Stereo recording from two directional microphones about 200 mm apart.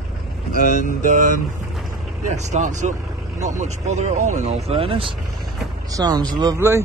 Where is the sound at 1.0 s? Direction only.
40° right (ahead or behind).